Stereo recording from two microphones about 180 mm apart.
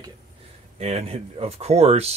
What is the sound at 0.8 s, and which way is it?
Speech, 35° right (ahead or behind).